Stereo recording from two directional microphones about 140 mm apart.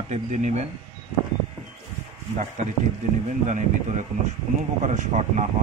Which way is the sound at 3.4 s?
60° right (ahead or behind).